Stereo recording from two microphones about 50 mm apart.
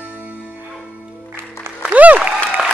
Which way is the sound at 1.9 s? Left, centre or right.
Right.